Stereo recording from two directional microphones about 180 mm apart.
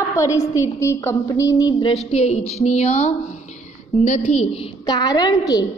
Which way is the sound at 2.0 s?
35° left (ahead or behind).